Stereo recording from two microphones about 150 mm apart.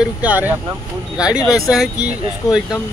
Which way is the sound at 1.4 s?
20° left (ahead or behind).